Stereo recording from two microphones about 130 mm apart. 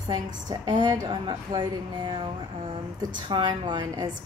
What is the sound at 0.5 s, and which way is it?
A woman's voice, 35° right (ahead or behind).